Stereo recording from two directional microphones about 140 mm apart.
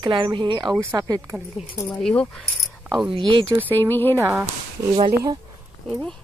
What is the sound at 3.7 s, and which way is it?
Speech, 15° left (ahead or behind).